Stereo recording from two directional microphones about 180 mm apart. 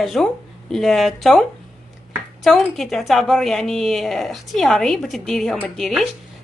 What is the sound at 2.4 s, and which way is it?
A woman's voice, centre (ahead or behind).